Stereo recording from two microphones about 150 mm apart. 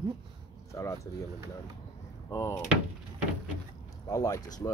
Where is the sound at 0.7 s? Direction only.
20° left (ahead or behind).